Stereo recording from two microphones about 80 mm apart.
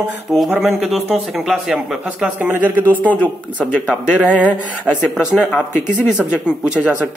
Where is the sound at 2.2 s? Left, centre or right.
Right.